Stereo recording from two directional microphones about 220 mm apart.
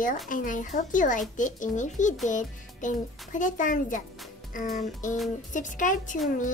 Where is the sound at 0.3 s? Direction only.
35° left (ahead or behind).